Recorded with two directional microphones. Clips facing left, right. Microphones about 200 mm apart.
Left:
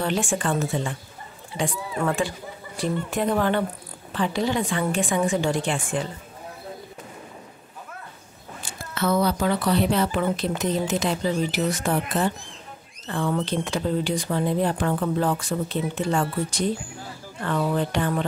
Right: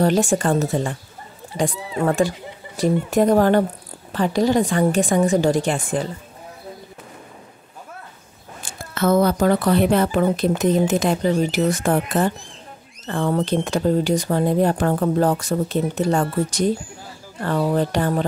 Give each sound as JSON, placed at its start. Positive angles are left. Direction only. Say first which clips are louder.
{"t": 0.0, "sound": "a woman's voice", "louder": "right 7 dB", "side_deg": -40}
{"t": 8.6, "sound": "a woman's voice", "louder": "right 5 dB", "side_deg": -50}